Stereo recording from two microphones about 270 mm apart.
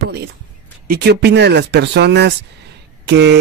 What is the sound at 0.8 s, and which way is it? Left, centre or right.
Speech, right.